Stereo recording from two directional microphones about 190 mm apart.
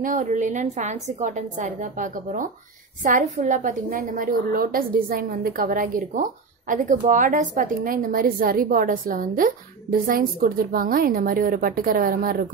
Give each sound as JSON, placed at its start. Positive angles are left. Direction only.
{"t": 0.0, "sound": "a woman's voice", "side_deg": -40}